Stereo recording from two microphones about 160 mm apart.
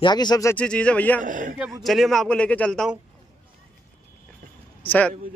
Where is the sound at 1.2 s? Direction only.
55° right (ahead or behind).